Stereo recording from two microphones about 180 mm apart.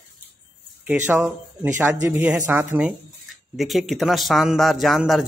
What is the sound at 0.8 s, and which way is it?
A man's voice, 10° right (ahead or behind).